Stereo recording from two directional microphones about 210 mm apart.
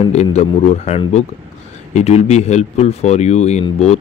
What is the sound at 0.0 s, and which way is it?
A man's voice, 30° left (ahead or behind).